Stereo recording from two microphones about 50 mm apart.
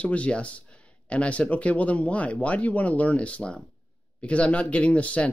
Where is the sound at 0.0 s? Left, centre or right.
Left.